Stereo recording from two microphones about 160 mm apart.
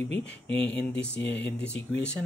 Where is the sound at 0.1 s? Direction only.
10° left (ahead or behind).